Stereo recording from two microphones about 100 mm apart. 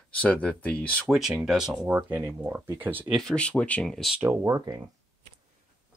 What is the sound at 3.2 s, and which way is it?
Speech, 10° left (ahead or behind).